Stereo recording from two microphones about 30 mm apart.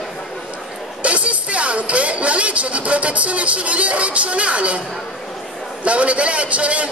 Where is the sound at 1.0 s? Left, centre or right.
Right.